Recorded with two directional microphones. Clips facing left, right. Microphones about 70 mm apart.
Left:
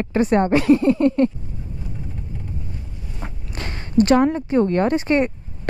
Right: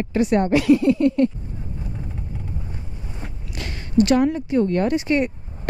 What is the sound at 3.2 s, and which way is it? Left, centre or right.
Speech, left.